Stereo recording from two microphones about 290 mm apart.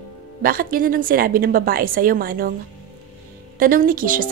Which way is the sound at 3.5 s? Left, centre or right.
Right.